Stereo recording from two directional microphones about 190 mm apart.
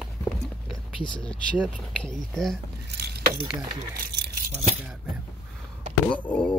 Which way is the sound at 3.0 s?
60° right (ahead or behind).